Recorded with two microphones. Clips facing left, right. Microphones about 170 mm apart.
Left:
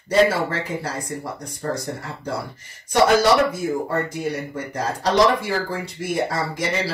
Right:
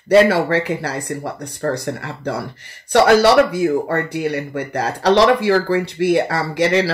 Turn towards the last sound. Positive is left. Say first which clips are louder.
# right 8 dB
turn(degrees=-75)  # may be behind; listen again after turning